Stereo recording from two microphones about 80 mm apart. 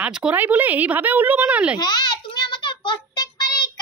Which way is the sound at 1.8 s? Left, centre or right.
Left.